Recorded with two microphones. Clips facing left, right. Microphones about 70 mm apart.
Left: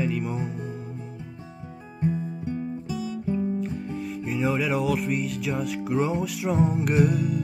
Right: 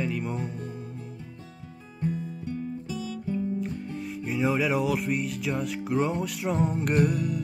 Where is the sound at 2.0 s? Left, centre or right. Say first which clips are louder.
Left 4 dB; left.